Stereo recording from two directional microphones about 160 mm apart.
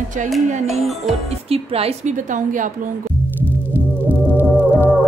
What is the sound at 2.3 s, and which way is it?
Speech, 55° right (ahead or behind).